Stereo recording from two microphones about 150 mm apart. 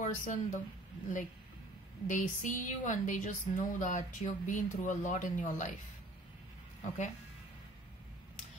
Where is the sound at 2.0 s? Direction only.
60° left (ahead or behind).